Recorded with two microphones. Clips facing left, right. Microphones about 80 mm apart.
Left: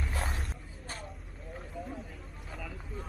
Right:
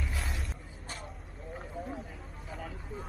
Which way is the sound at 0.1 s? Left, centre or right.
Left.